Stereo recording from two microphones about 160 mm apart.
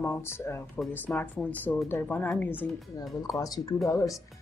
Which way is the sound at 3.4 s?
25° left (ahead or behind).